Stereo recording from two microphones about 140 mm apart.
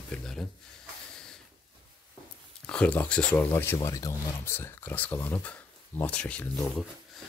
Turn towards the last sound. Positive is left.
turn(degrees=5)  # may be behind; listen again after turning